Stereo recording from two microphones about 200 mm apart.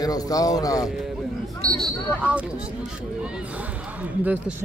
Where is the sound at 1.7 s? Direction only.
5° right (ahead or behind).